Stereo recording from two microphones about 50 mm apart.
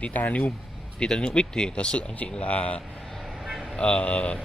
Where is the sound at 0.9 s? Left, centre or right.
Centre.